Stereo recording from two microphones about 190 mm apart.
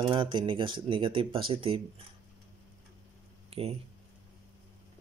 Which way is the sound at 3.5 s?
30° right (ahead or behind).